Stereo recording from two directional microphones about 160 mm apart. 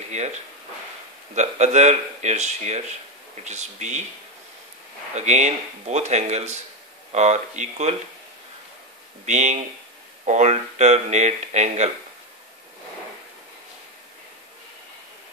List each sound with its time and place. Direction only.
0.1 s speech: 45° right (ahead or behind)
5.1 s speech: 45° right (ahead or behind)
9.2 s speech: 45° right (ahead or behind)